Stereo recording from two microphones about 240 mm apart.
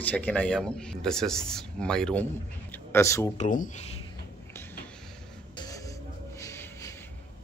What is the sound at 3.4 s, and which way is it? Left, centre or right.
Speech, left.